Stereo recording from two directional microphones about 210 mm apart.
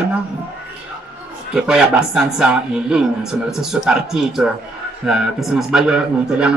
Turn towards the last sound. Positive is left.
turn(degrees=-5)  # may be behind; listen again after turning